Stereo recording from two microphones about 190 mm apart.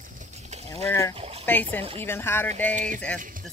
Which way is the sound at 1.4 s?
10° left (ahead or behind).